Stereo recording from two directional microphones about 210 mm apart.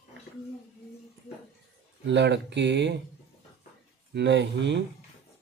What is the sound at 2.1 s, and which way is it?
Speech, 55° right (ahead or behind).